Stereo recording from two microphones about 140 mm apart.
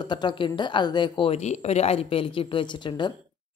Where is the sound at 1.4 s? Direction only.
50° left (ahead or behind); by 3.1 s 35° left (ahead or behind).